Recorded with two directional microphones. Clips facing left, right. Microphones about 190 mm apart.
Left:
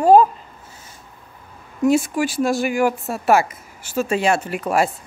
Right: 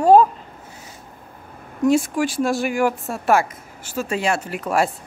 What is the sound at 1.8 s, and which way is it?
A woman's voice, 5° left (ahead or behind).